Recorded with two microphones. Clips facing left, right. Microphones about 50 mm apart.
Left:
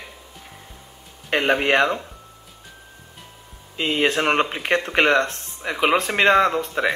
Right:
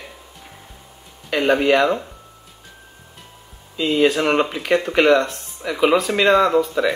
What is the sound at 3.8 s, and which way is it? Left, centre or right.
Speech, left.